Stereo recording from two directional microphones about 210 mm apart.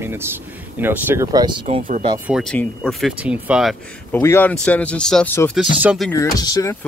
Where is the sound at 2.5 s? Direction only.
Centre (ahead or behind).